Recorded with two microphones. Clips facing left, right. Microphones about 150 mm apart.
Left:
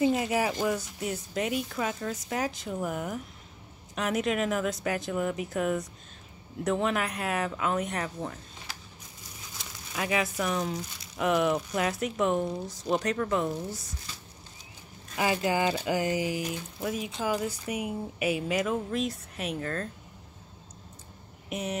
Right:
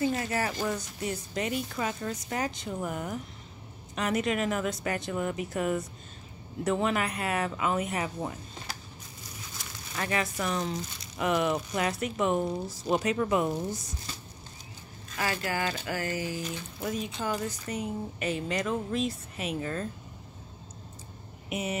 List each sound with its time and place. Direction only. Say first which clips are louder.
0.0 s speech: left 3 dB; 15° left (ahead or behind)
0.7 s speech: left 1 dB; 5° left (ahead or behind)
8.7 s crushing: right 3 dB; 40° right (ahead or behind)
9.9 s speech: left 2 dB; 5° left (ahead or behind); by 13.7 s 10° right (ahead or behind)
15.1 s speech: left 5 dB; 15° left (ahead or behind); by 19.9 s 5° right (ahead or behind)
21.5 s speech: right 1 dB; 5° right (ahead or behind)